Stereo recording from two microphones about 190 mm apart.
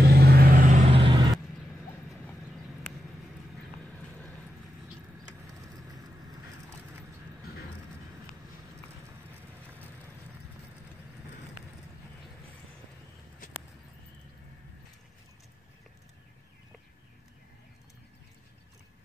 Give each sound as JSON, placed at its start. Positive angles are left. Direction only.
{"t": 0.0, "sound": "vehicle", "side_deg": -55}
{"t": 0.8, "sound": "vehicle", "side_deg": -25}